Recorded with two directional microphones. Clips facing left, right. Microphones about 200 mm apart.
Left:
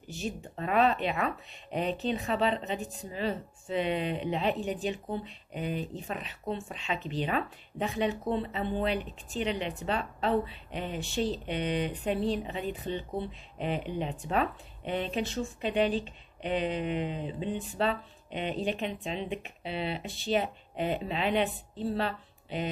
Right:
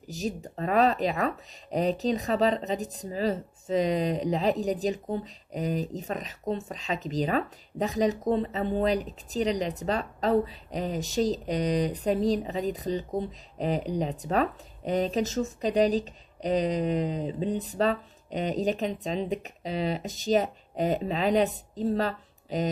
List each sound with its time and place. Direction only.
0.1 s speech: 40° right (ahead or behind)